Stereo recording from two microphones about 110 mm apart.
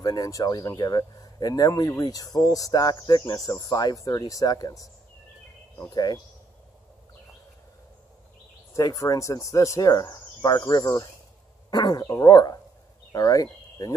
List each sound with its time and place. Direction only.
0.0 s speech: 35° left (ahead or behind)
8.7 s speech: 30° left (ahead or behind)